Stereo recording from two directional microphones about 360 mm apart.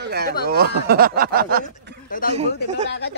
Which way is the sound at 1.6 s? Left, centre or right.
Left.